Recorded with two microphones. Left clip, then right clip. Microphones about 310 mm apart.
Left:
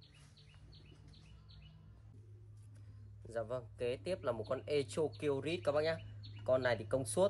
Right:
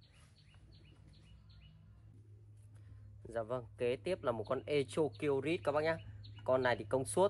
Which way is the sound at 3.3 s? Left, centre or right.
Centre.